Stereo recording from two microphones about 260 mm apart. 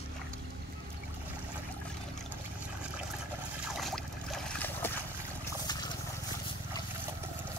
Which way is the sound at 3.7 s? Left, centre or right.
Centre.